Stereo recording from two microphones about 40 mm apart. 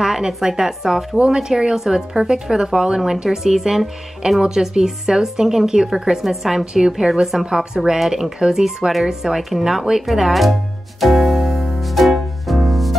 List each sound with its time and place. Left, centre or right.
0.0 s speech: centre
1.1 s speech: right; by 3.9 s centre
4.4 s speech: centre
11.0 s music: centre